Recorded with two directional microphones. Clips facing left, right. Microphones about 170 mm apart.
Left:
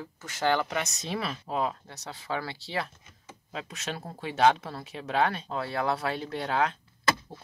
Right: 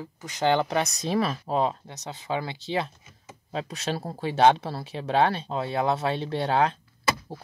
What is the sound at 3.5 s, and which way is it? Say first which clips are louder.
Speech: right 6 dB; 35° right (ahead or behind).